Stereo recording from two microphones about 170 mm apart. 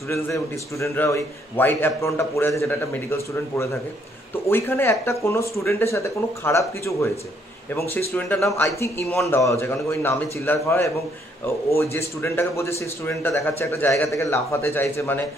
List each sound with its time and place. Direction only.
0.1 s speech: 15° left (ahead or behind)
8.1 s speech: 10° left (ahead or behind)